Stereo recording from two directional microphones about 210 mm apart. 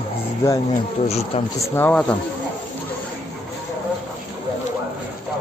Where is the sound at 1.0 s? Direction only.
30° left (ahead or behind).